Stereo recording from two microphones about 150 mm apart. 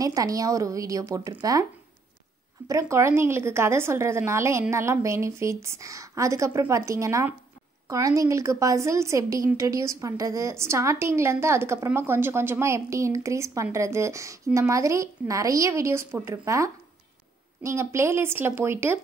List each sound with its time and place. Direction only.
0.0 s a woman's voice: 25° right (ahead or behind)
2.7 s a woman's voice: 20° right (ahead or behind)